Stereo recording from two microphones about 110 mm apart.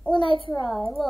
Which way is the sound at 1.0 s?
Centre (ahead or behind).